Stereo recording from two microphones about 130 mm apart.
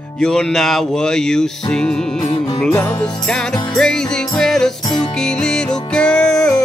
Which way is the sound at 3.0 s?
5° left (ahead or behind).